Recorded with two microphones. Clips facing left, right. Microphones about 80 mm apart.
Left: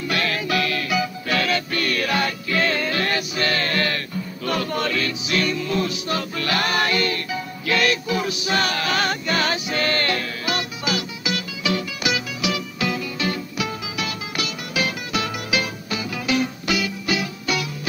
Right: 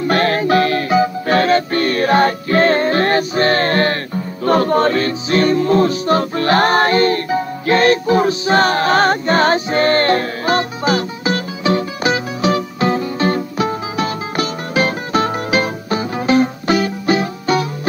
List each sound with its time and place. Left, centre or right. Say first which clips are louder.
0.0 s music: right 9 dB; right